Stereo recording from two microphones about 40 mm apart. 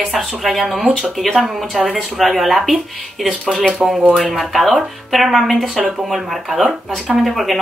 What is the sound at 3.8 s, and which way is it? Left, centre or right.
Speech, right.